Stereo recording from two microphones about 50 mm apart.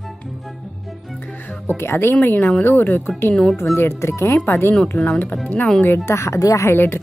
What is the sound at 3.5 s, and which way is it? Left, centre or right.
Speech, left.